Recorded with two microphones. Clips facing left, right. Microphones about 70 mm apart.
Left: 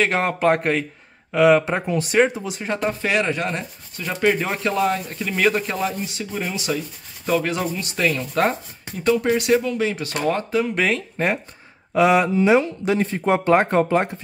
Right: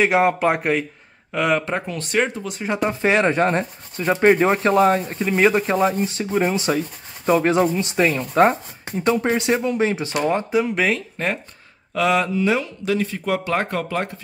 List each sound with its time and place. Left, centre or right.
0.0 s a man's voice: centre
2.7 s speech: centre
3.0 s speech: right
10.1 s speech: centre
10.7 s a man's voice: centre
11.2 s speech: centre
11.9 s speech: centre